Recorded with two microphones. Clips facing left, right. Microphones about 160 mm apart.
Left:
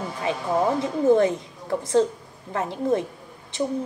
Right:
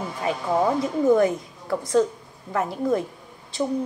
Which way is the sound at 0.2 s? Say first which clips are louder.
Right 1 dB; 25° left (ahead or behind).